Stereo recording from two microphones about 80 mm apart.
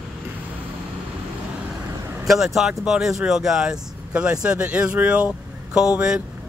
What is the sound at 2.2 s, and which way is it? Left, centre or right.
Speech, centre.